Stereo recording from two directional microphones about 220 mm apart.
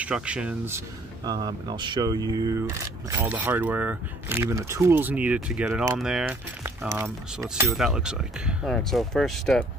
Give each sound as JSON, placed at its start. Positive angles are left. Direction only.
{"t": 0.0, "sound": "speech", "side_deg": -5}